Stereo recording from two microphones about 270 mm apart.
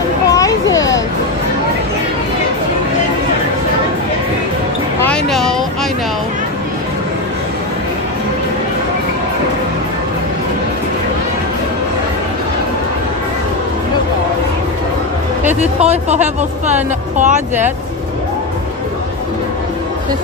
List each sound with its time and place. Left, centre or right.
0.3 s children playing: centre
5.0 s basketball bounce: centre
15.4 s a woman's voice: right